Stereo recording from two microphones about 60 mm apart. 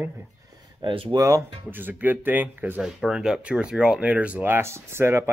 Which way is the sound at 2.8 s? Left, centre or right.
Centre.